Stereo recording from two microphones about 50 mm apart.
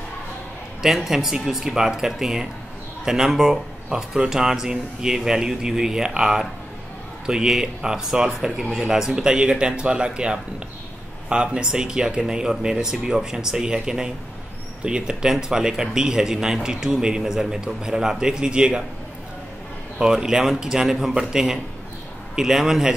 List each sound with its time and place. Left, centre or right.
0.8 s speech: centre
20.0 s speech: centre